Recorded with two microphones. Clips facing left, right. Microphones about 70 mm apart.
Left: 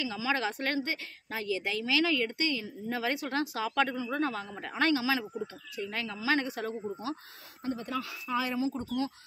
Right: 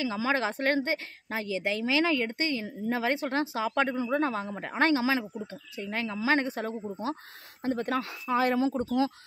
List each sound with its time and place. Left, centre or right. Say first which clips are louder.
0.0 s a woman's voice: right 3 dB; right
7.6 s speech: right 5 dB; right
8.0 s speech: right 6 dB; right